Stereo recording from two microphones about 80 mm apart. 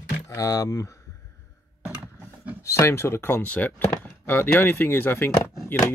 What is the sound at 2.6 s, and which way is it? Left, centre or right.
Speech, left.